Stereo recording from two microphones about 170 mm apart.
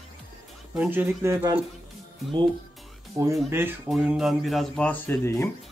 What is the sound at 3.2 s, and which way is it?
Speech, 20° right (ahead or behind).